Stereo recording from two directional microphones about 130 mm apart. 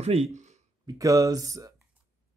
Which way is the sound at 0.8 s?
25° right (ahead or behind).